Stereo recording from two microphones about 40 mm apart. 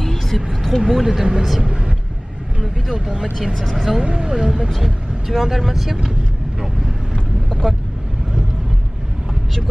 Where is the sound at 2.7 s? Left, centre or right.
Centre.